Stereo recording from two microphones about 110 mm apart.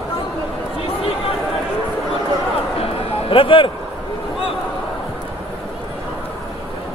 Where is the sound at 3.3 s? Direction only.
50° left (ahead or behind).